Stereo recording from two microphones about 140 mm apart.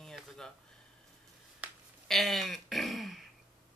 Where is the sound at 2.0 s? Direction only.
Centre (ahead or behind).